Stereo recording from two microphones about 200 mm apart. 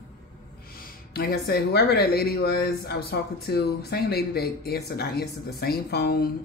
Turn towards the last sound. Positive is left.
turn(degrees=50)  # may be behind; listen again after turning